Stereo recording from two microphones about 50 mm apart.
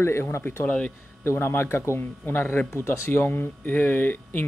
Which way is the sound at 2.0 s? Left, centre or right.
Left.